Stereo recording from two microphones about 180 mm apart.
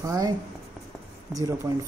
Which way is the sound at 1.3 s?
20° right (ahead or behind).